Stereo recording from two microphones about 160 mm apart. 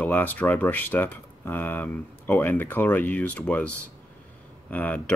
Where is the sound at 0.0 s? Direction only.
10° left (ahead or behind).